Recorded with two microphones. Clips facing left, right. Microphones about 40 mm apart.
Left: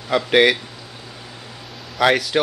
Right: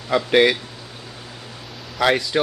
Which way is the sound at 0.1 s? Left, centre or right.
Centre.